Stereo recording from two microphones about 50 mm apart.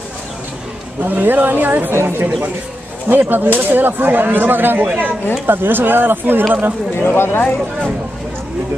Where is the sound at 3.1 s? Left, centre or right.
Right.